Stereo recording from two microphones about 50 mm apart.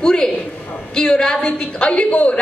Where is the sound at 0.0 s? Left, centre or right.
Centre.